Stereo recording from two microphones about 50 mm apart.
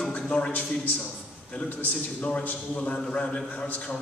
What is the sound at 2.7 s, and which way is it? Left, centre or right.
Speech, left.